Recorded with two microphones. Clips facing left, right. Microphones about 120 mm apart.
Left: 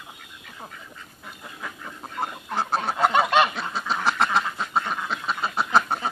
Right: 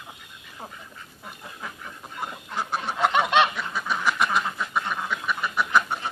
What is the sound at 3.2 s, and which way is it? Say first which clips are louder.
Goose: right 1 dB; 5° left (ahead or behind).